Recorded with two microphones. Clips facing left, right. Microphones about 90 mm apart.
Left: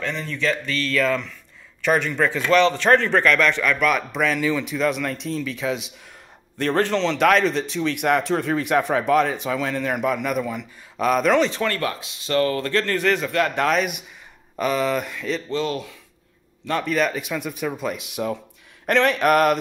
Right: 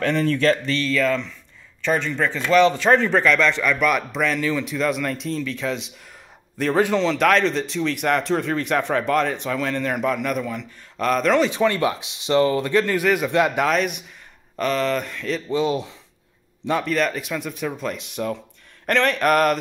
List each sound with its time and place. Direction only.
0.0 s speech: 65° right (ahead or behind)
1.0 s speech: 10° left (ahead or behind)
2.5 s a man's voice: 5° right (ahead or behind)
6.6 s a man's voice: 5° right (ahead or behind)
11.5 s speech: 15° right (ahead or behind)
13.6 s a man's voice: centre (ahead or behind)
15.5 s speech: 15° right (ahead or behind)
16.8 s a man's voice: 5° left (ahead or behind)